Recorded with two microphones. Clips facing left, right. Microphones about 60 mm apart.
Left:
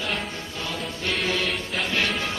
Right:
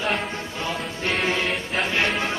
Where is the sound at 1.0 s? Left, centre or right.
Right.